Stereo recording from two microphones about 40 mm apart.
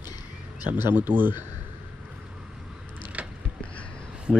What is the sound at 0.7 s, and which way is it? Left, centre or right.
Speech, right.